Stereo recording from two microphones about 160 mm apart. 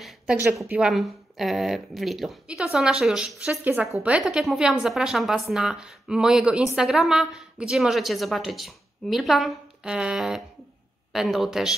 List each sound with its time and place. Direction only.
0.0 s a sound: 5° right (ahead or behind)
0.5 s a woman's voice: 15° right (ahead or behind)
0.7 s a woman's voice: 5° right (ahead or behind)